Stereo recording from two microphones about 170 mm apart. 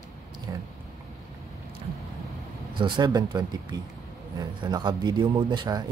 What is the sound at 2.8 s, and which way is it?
Speech, 25° right (ahead or behind).